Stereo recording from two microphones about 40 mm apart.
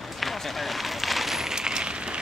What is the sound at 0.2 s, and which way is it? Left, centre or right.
Run, centre.